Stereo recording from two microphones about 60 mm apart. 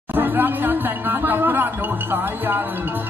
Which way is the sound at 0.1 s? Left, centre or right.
Right.